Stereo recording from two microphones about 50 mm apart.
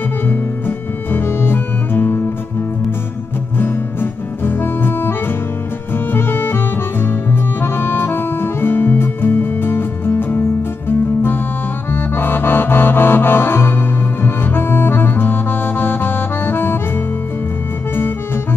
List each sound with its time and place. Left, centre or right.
0.3 s music: left
3.5 s music: left
6.1 s music: left
11.9 s accordion: left